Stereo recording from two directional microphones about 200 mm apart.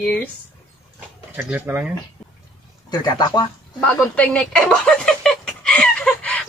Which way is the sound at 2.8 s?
20° left (ahead or behind).